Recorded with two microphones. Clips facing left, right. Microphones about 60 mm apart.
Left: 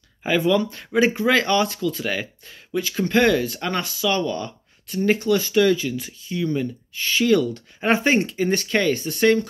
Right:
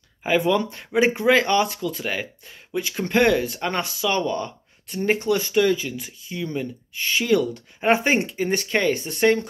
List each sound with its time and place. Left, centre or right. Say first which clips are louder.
0.2 s speech: left 1 dB; centre